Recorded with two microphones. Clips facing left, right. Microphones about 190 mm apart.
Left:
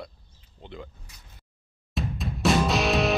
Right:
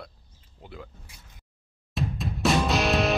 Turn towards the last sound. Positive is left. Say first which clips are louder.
# even
turn(degrees=0)  # may be behind; listen again after turning